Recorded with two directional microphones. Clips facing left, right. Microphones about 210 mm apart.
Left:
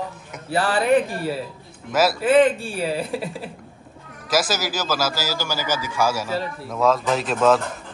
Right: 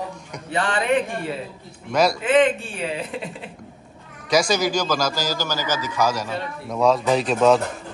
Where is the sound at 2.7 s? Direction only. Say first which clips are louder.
Left 3 dB; 35° left (ahead or behind).